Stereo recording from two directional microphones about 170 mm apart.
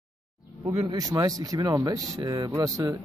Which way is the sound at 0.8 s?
25° right (ahead or behind).